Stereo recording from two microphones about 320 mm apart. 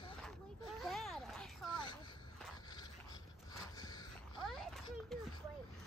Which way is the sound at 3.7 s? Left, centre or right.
Centre.